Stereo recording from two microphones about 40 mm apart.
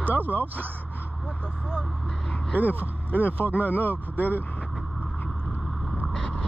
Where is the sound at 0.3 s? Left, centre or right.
Left.